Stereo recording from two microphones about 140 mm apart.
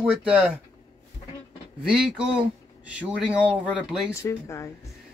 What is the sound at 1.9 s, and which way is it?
Speech, 5° right (ahead or behind).